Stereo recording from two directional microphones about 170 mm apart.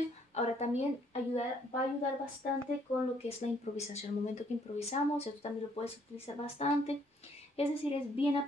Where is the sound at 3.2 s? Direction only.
40° left (ahead or behind).